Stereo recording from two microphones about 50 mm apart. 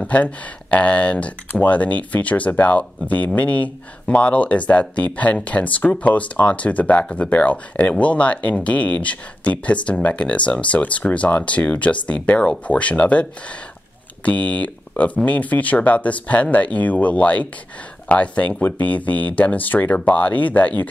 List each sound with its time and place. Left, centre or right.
0.0 s speech: left